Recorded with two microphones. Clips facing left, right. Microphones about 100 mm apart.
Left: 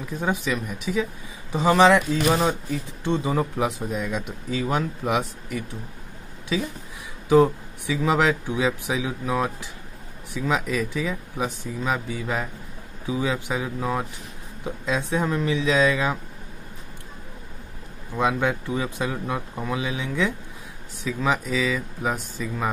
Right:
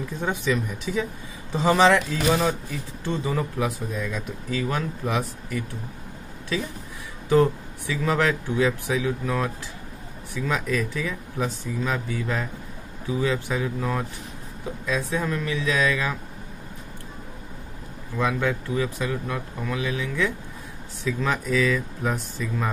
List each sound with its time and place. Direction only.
0.5 s speech: 10° left (ahead or behind)
3.0 s speech: 20° left (ahead or behind)
7.2 s speech: 15° left (ahead or behind)
18.1 s speech: 20° left (ahead or behind)